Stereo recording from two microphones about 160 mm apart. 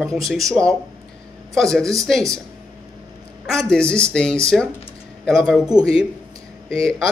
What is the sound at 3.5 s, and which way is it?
Speech, 5° left (ahead or behind).